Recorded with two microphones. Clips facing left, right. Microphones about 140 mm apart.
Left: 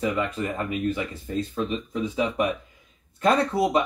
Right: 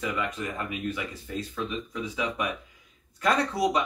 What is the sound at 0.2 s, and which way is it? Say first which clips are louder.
Speech: left 4 dB; 40° left (ahead or behind).